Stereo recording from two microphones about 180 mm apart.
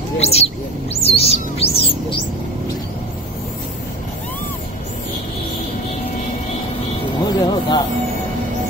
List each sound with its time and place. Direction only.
0.2 s speech: 35° left (ahead or behind)
1.0 s music: 35° left (ahead or behind)
7.2 s a sound: 25° left (ahead or behind)